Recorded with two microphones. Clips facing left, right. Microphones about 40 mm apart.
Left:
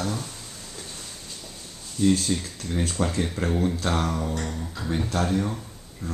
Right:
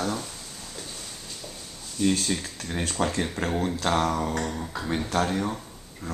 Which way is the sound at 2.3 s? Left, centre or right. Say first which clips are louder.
Left 2 dB; right.